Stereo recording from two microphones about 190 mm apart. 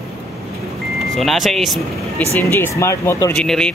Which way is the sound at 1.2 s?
Centre (ahead or behind).